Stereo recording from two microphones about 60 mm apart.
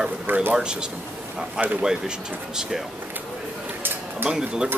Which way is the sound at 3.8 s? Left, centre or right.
Right.